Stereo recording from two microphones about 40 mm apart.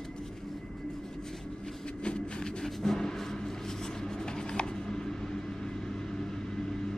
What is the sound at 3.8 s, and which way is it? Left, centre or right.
Writing, centre.